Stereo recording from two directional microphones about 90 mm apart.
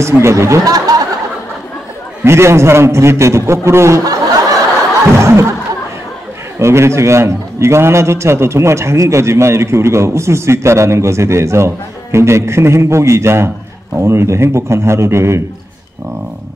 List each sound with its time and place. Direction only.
0.0 s a man's voice: 30° right (ahead or behind)
2.2 s a man's voice: 30° right (ahead or behind)
5.1 s a sound: 30° right (ahead or behind)
6.6 s a man's voice: 30° right (ahead or behind)